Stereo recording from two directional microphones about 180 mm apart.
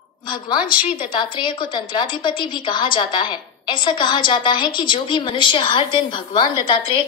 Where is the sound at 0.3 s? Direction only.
25° left (ahead or behind).